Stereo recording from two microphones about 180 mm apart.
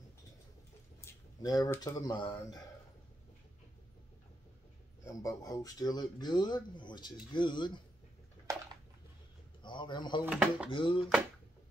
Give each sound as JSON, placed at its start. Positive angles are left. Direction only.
{"t": 1.1, "sound": "a sound", "side_deg": 15}
{"t": 1.4, "sound": "speech", "side_deg": 20}
{"t": 5.0, "sound": "speech", "side_deg": 20}
{"t": 9.6, "sound": "a man's voice", "side_deg": 25}
{"t": 10.2, "sound": "speech", "side_deg": -5}
{"t": 10.7, "sound": "speech", "side_deg": 30}